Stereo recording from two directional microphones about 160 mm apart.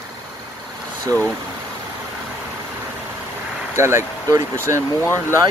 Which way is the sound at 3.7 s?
15° right (ahead or behind).